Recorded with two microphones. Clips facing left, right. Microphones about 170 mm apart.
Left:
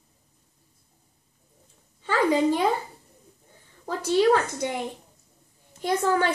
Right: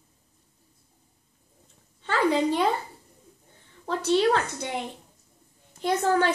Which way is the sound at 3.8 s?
10° left (ahead or behind).